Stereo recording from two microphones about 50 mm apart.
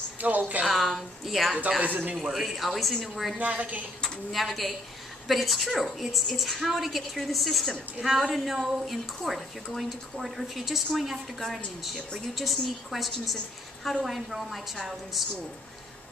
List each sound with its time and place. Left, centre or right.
0.2 s a woman's voice: right
0.7 s speech: centre
1.8 s a woman's voice: right
2.1 s speech: centre
3.3 s a woman's voice: right
4.3 s speech: centre